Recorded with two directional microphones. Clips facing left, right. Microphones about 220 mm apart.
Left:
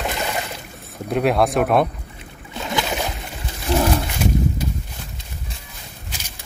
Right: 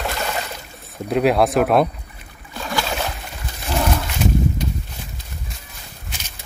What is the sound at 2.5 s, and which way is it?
Boat, 20° left (ahead or behind).